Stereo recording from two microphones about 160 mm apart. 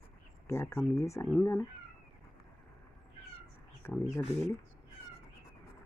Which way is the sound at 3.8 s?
15° left (ahead or behind).